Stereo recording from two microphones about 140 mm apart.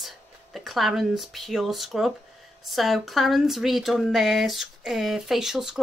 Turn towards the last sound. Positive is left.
turn(degrees=-5)  # may be behind; listen again after turning